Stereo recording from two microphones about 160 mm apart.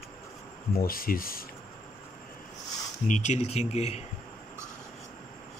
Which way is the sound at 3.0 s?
50° left (ahead or behind).